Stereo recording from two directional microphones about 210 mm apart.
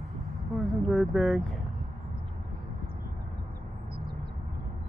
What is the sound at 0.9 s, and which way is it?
Speech, centre (ahead or behind).